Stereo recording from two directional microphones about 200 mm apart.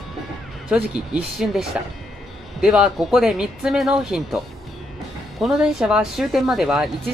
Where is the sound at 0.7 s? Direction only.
5° right (ahead or behind).